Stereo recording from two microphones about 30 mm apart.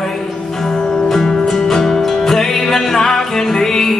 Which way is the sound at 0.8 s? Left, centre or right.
Left.